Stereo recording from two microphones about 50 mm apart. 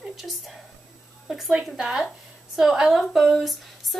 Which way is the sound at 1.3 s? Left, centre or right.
Centre.